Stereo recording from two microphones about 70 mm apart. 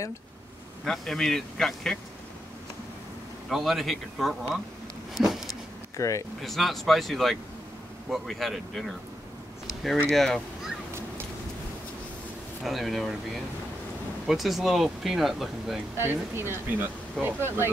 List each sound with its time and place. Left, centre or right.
0.8 s speech: centre
3.4 s speech: centre
5.1 s a sound: centre
5.9 s speech: left
6.4 s speech: centre
10.1 s speech: centre
10.9 s a sound: right
12.6 s speech: centre
14.2 s speech: centre
16.0 s speech: right